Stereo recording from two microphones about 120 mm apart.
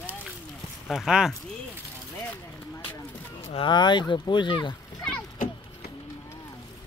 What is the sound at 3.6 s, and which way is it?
Speech, 40° left (ahead or behind).